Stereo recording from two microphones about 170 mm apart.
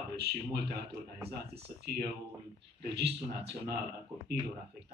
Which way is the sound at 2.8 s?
75° right (ahead or behind).